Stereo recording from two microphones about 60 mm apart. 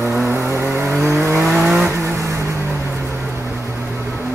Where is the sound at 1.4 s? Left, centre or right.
Centre.